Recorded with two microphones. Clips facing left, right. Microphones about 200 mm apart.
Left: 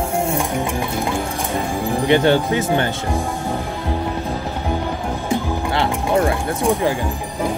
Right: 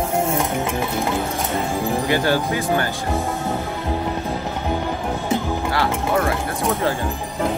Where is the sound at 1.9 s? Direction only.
25° left (ahead or behind).